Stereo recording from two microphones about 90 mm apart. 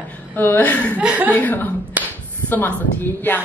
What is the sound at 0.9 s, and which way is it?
Speech, 15° right (ahead or behind).